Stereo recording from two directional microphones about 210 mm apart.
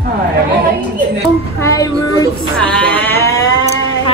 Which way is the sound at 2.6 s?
5° left (ahead or behind).